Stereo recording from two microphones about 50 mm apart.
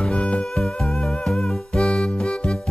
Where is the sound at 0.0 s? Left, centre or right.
Left.